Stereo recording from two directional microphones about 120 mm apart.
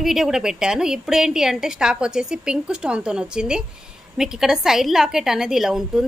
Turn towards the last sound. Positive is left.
turn(degrees=-5)  # may be behind; listen again after turning